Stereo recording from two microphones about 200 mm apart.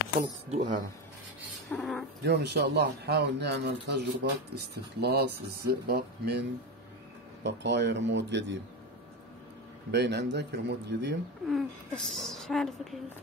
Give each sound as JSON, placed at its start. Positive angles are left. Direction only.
{"t": 0.5, "sound": "speech", "side_deg": -40}
{"t": 1.8, "sound": "speech", "side_deg": 0}
{"t": 2.2, "sound": "a man's voice", "side_deg": -55}
{"t": 7.4, "sound": "a man's voice", "side_deg": -60}
{"t": 9.8, "sound": "a man's voice", "side_deg": -55}
{"t": 11.4, "sound": "speech", "side_deg": 0}